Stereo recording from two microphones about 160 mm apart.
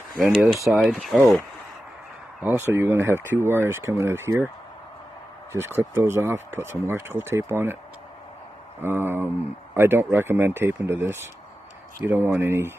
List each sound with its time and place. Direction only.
0.7 s speech: 5° right (ahead or behind)
2.4 s speech: 15° right (ahead or behind)
5.5 s speech: 15° right (ahead or behind)
8.8 s speech: 15° right (ahead or behind)